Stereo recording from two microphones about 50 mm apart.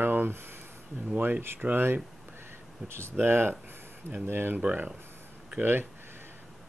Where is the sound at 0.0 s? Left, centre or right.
Right.